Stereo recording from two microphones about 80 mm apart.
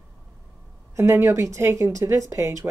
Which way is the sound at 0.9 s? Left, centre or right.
Right.